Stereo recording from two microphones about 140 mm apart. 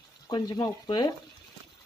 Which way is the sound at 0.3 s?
30° left (ahead or behind).